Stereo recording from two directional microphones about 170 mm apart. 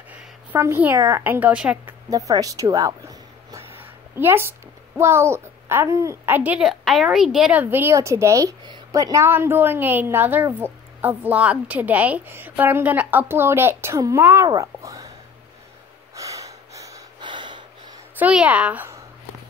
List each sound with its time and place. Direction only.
0.1 s a woman's voice: 15° right (ahead or behind)
1.9 s a sound: 20° right (ahead or behind)
3.8 s a child's voice: 15° right (ahead or behind)
16.2 s snort: 20° right (ahead or behind)
18.2 s a woman's voice: 10° right (ahead or behind)